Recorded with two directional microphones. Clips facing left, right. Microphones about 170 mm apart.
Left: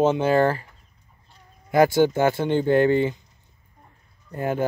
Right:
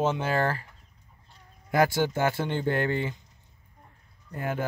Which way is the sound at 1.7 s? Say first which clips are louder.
Left 6 dB; 20° left (ahead or behind).